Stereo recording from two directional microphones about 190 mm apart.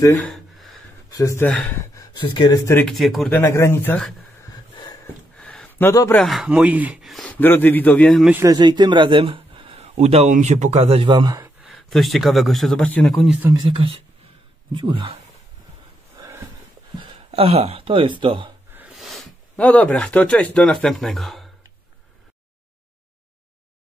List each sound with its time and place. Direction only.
0.0 s speech: 15° left (ahead or behind)
0.3 s a sound: centre (ahead or behind)
1.1 s speech: 15° left (ahead or behind)
2.9 s speech: centre (ahead or behind)
3.3 s speech: 15° left (ahead or behind)
5.0 s a sound: 5° left (ahead or behind)
6.2 s speech: centre (ahead or behind)
8.3 s speech: 15° right (ahead or behind)
11.6 s speech: centre (ahead or behind)
13.4 s speech: 20° right (ahead or behind)
17.1 s speech: 30° right (ahead or behind)
18.7 s speech: 5° right (ahead or behind)